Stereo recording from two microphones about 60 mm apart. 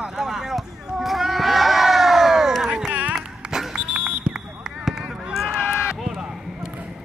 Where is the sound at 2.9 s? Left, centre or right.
Right.